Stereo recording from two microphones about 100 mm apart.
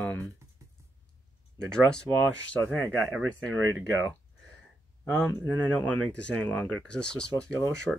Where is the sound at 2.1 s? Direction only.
30° left (ahead or behind).